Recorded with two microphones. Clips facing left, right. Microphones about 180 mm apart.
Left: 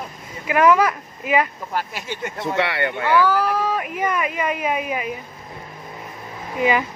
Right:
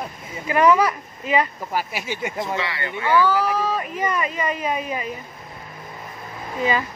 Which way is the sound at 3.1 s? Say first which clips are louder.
Even; 10° left (ahead or behind).